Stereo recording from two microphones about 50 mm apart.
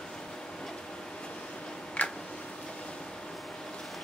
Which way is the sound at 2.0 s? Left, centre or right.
Left.